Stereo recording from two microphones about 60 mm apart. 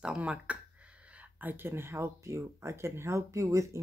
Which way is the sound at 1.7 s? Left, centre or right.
Right.